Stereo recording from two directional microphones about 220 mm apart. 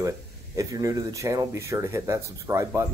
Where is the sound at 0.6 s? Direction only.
15° right (ahead or behind).